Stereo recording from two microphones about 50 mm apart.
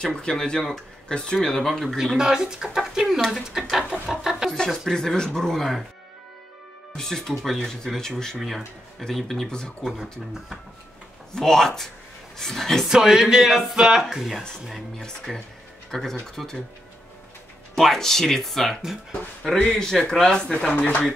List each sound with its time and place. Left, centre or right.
0.0 s speech: centre
2.1 s speech: centre
4.9 s speech: centre
7.0 s speech: centre
11.3 s speech: centre
12.8 s speech: centre
15.3 s speech: centre
17.7 s speech: centre
20.7 s speech: left